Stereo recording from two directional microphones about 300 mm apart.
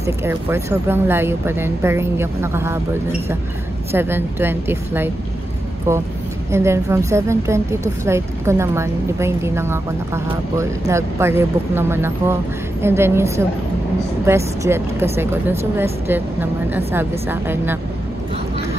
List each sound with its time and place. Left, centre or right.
0.0 s a woman's voice: centre